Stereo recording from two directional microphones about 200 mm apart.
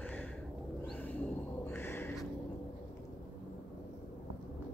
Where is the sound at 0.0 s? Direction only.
5° left (ahead or behind).